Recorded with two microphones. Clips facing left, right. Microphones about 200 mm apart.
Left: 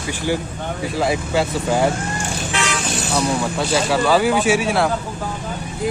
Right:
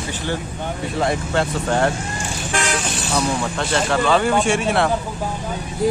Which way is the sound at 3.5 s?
5° left (ahead or behind).